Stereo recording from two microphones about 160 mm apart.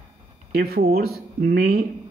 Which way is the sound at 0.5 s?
75° right (ahead or behind).